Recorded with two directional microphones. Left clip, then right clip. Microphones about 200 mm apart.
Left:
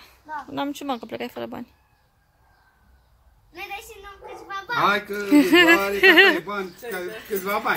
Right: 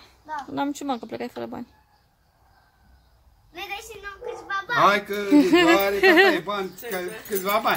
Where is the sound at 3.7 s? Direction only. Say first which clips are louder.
Right 2 dB; 35° left (ahead or behind).